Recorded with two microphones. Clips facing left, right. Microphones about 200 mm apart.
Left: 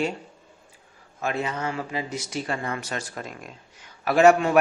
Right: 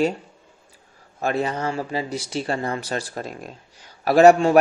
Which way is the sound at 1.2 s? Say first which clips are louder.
Right 4 dB; 35° right (ahead or behind).